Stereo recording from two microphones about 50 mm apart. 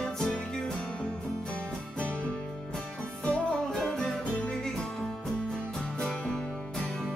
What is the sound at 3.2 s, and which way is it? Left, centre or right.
Music, centre.